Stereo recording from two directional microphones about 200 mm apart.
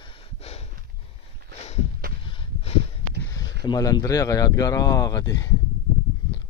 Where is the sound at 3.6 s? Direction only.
20° left (ahead or behind).